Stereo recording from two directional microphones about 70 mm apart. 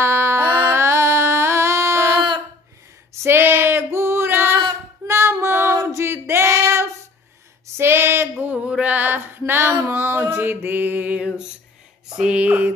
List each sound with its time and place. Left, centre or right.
0.0 s music: right
3.2 s female singing: right
5.9 s a sound: right
8.6 s a sound: centre
9.5 s female singing: right
10.4 s mantra: right
12.2 s mantra: centre